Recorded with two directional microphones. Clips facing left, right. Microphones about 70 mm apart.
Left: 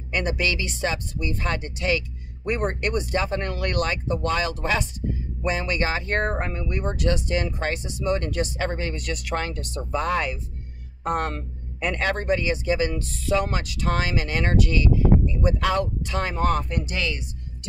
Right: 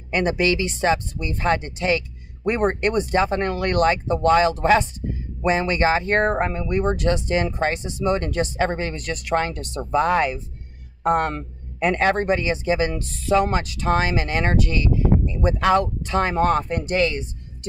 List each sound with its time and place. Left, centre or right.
0.1 s speech: right